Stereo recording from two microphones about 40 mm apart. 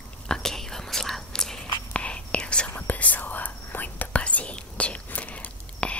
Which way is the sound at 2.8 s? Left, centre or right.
Left.